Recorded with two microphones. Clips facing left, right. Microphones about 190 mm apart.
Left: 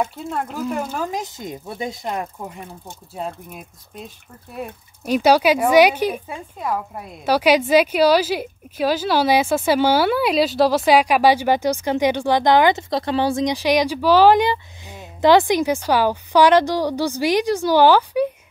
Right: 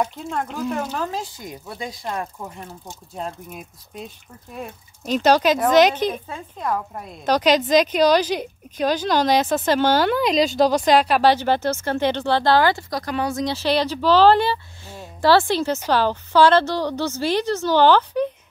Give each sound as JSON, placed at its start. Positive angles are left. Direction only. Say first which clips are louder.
{"t": 0.0, "sound": "speech", "louder": "left 1 dB", "side_deg": 5}
{"t": 0.9, "sound": "speech", "louder": "left 1 dB", "side_deg": 15}
{"t": 3.2, "sound": "speech", "louder": "left 1 dB", "side_deg": 0}
{"t": 4.6, "sound": "speech", "louder": "left 3 dB", "side_deg": 10}
{"t": 13.5, "sound": "speech", "louder": "left 3 dB", "side_deg": 15}